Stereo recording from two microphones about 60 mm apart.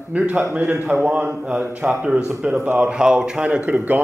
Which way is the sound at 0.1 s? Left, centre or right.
Right.